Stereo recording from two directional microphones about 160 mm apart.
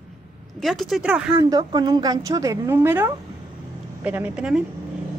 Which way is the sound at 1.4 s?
25° right (ahead or behind).